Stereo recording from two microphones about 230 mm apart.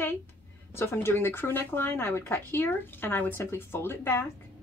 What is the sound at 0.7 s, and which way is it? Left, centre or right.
Speech, centre.